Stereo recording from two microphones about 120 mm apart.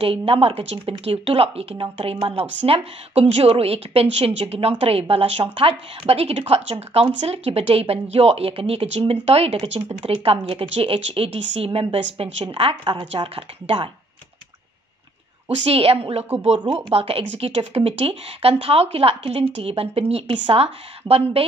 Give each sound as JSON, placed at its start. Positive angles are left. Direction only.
{"t": 0.0, "sound": "a woman's voice", "side_deg": -50}
{"t": 15.6, "sound": "a woman's voice", "side_deg": -55}